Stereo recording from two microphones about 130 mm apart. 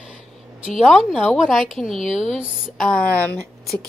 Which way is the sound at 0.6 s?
Centre (ahead or behind).